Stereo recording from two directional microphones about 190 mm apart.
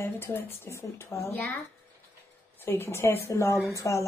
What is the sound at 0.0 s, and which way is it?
Speech, 10° left (ahead or behind).